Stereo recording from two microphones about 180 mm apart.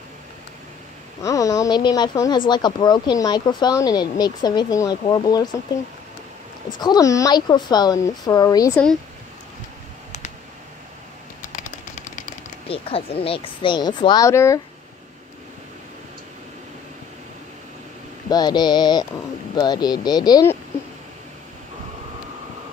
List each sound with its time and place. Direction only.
1.2 s speech: 20° left (ahead or behind)
6.8 s speech: 20° left (ahead or behind)
11.4 s a sound: 45° left (ahead or behind)
12.6 s speech: 30° left (ahead or behind); by 14.6 s 15° left (ahead or behind)
18.3 s speech: 25° left (ahead or behind)